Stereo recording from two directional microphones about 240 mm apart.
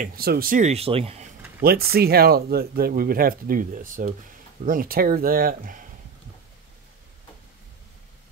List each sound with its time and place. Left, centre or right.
0.0 s speech: right
1.6 s speech: right